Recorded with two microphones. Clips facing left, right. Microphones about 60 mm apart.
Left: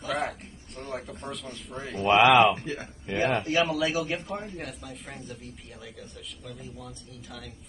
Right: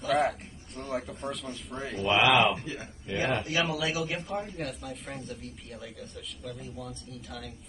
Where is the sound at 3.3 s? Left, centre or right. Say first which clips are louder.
Left 4 dB; left.